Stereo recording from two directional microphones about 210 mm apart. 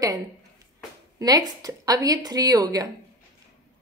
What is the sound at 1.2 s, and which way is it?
A woman's voice, 20° right (ahead or behind).